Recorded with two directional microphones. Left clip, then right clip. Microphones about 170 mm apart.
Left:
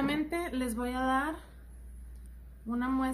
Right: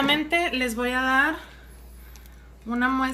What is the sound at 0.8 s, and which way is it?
Speech, 20° left (ahead or behind).